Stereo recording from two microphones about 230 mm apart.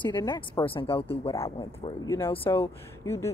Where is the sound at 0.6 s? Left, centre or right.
Left.